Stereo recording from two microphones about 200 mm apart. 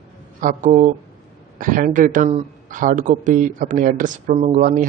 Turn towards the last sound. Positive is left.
turn(degrees=-35)  # may be behind; listen again after turning